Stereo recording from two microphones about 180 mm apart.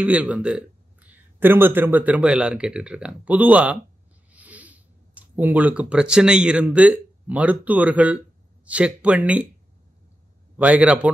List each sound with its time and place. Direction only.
0.0 s speech: 10° right (ahead or behind)
10.6 s speech: 5° right (ahead or behind)